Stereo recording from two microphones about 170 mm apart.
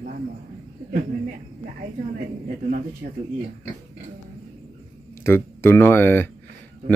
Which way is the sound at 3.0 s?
70° right (ahead or behind).